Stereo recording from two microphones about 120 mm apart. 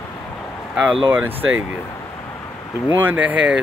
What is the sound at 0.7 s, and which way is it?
Speech, 5° right (ahead or behind).